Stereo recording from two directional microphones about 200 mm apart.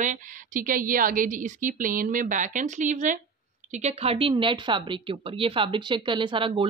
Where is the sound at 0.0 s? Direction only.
40° right (ahead or behind).